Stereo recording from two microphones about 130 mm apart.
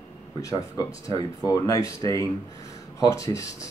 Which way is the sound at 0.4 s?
25° left (ahead or behind).